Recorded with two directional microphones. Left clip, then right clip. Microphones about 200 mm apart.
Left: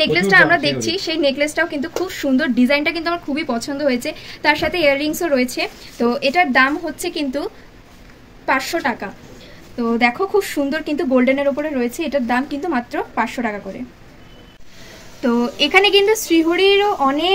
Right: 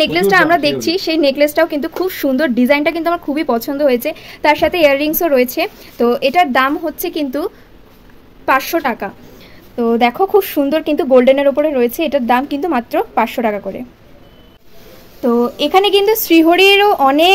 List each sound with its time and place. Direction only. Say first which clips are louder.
0.0 s a woman's voice: right 1 dB; 45° right (ahead or behind)
15.6 s speech: even; 40° right (ahead or behind)